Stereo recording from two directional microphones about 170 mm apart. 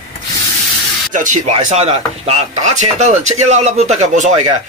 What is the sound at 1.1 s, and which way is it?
Speech, 50° right (ahead or behind).